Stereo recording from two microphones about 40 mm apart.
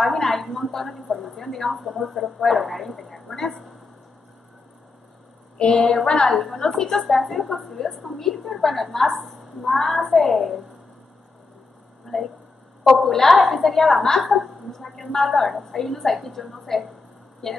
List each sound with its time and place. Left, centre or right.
0.0 s a woman's voice: centre
5.6 s a sound: left
6.2 s a woman's voice: centre
12.1 s a sound: centre
12.8 s a woman's voice: centre
14.2 s a woman's voice: centre